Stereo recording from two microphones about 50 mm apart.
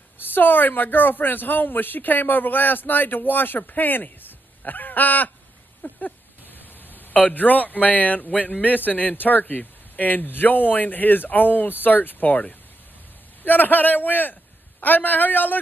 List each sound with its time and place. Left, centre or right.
0.3 s speech: left
6.9 s a sound: left
7.2 s speech: left